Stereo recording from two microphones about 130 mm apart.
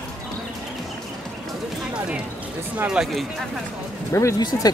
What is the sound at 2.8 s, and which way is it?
Speech, 5° right (ahead or behind).